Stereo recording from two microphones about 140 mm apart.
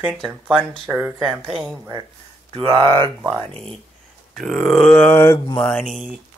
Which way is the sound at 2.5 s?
40° right (ahead or behind).